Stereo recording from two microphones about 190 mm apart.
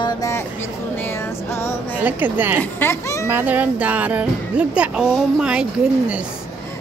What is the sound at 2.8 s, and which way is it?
Speech, 15° left (ahead or behind).